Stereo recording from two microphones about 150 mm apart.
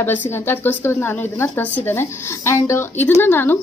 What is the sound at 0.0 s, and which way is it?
Speech, 15° left (ahead or behind).